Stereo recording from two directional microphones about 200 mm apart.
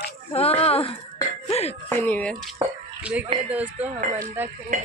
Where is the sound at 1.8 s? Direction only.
10° left (ahead or behind).